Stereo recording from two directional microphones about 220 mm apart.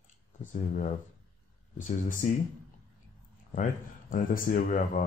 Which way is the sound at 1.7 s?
35° left (ahead or behind).